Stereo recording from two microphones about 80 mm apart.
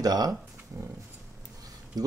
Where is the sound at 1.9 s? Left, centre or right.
Right.